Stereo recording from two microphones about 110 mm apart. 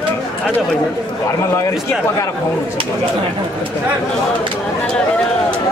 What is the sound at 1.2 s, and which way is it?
Speech, 25° left (ahead or behind).